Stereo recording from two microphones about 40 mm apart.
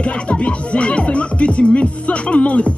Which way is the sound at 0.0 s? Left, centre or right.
Left.